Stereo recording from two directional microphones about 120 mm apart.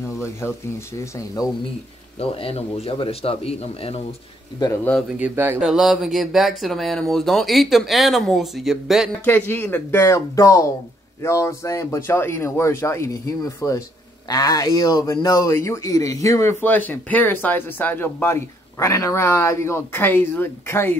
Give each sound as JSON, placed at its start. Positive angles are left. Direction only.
{"t": 0.2, "sound": "speech", "side_deg": 25}
{"t": 2.1, "sound": "a man's voice", "side_deg": 55}
{"t": 5.2, "sound": "speech", "side_deg": -15}
{"t": 5.6, "sound": "speech", "side_deg": 0}
{"t": 9.2, "sound": "speech", "side_deg": 15}
{"t": 16.6, "sound": "speech", "side_deg": 15}